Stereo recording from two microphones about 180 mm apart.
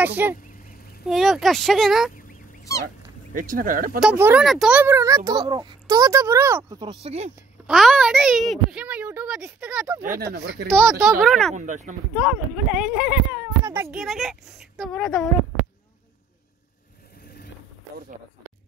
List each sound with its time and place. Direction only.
0.0 s a child's voice: 10° right (ahead or behind)
3.3 s speech: 50° right (ahead or behind)
4.0 s a child's voice: 10° right (ahead or behind); by 7.2 s 35° right (ahead or behind)
7.6 s a child's voice: centre (ahead or behind)
10.0 s speech: 55° right (ahead or behind)
10.7 s a child's voice: centre (ahead or behind)
11.5 s speech: 45° right (ahead or behind)
12.2 s a child's voice: 5° right (ahead or behind)
13.9 s a child's voice: centre (ahead or behind)